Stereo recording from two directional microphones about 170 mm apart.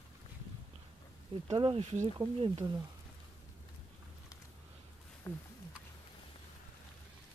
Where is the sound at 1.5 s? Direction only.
30° right (ahead or behind).